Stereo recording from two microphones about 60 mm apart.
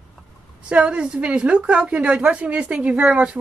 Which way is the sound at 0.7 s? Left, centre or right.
Centre.